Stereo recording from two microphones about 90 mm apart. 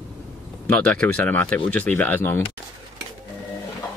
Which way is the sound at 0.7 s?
15° left (ahead or behind).